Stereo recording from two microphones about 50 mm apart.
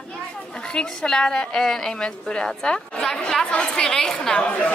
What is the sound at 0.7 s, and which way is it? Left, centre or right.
A woman's voice, centre.